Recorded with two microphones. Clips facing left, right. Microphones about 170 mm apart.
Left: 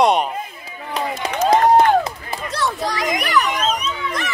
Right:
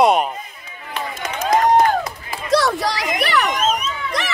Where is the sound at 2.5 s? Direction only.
75° right (ahead or behind).